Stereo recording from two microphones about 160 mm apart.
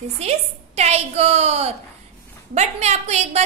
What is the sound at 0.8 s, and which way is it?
A woman's voice, 40° right (ahead or behind).